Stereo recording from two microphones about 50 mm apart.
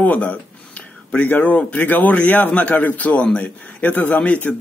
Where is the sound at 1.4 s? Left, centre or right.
Left.